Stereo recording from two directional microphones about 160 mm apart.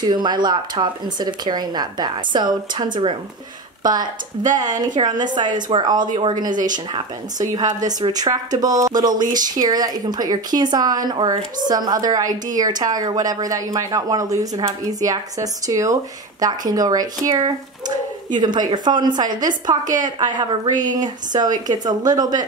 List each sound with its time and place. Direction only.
0.1 s speech: 30° right (ahead or behind)
6.5 s speech: 55° right (ahead or behind)
6.9 s speech: 25° right (ahead or behind)